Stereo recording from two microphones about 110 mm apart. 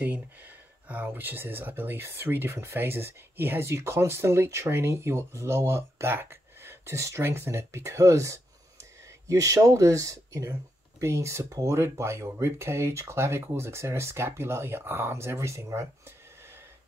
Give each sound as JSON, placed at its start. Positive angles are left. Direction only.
{"t": 0.8, "sound": "speech", "side_deg": -15}